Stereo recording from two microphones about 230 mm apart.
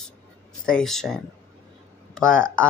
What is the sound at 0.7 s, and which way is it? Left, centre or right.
Speech, centre.